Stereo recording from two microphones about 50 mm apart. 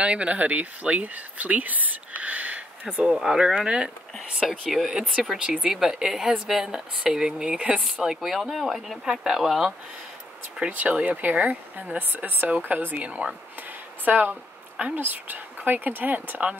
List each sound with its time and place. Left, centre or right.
0.0 s speech: right
3.2 s a woman's voice: centre
4.5 s speech: centre
5.4 s a woman's voice: centre
8.0 s speech: centre
9.0 s a woman's voice: centre
10.7 s speech: right
13.0 s speech: right
14.0 s speech: right
14.3 s a sound: right
15.0 s speech: right